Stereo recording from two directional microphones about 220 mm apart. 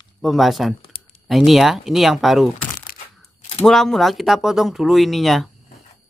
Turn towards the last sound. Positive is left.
turn(degrees=0)  # may be behind; listen again after turning